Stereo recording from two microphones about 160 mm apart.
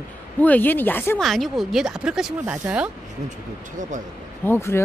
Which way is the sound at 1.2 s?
Centre (ahead or behind).